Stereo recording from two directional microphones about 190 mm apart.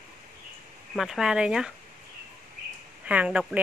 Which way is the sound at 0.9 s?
Centre (ahead or behind).